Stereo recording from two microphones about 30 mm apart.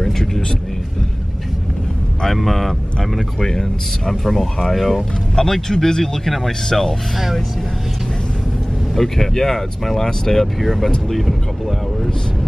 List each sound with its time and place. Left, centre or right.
0.0 s a sound: centre
2.2 s speech: centre
5.3 s speech: centre
8.9 s speech: centre